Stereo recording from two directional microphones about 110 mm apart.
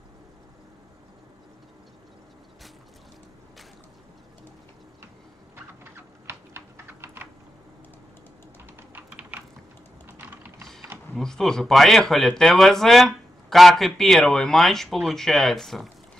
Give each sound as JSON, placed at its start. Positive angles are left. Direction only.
{"t": 5.9, "sound": "typing", "side_deg": -20}
{"t": 8.9, "sound": "typing", "side_deg": -15}
{"t": 11.1, "sound": "speech", "side_deg": 5}